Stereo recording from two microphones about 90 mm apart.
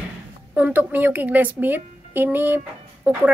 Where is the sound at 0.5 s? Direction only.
20° right (ahead or behind).